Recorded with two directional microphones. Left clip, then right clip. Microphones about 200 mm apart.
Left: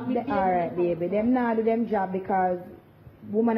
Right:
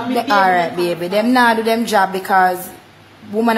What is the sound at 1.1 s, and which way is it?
A woman's voice, 10° right (ahead or behind).